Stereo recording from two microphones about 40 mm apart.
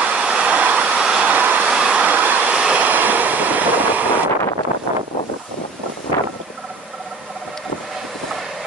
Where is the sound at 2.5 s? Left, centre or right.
Right.